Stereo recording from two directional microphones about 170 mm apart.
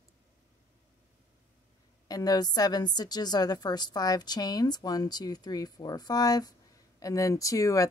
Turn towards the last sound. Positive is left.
turn(degrees=20)  # may be behind; listen again after turning